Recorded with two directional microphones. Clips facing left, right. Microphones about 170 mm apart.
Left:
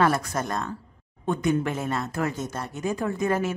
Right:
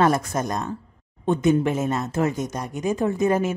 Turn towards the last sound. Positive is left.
turn(degrees=-20)  # may be behind; listen again after turning